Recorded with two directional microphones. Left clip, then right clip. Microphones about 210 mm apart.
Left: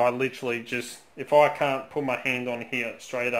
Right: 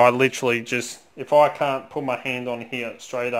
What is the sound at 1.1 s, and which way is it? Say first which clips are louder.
Speech: right 3 dB; 35° right (ahead or behind).